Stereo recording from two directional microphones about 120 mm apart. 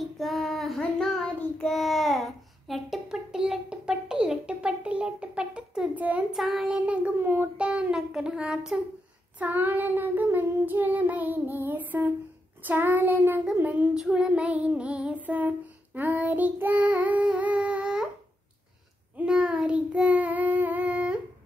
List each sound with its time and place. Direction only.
0.2 s child singing: centre (ahead or behind)
19.1 s child singing: 10° right (ahead or behind)